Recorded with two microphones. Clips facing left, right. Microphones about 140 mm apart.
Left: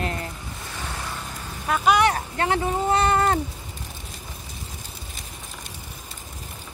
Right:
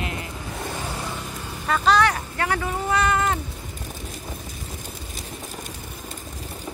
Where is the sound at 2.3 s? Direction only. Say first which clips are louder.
Left 2 dB; 25° left (ahead or behind).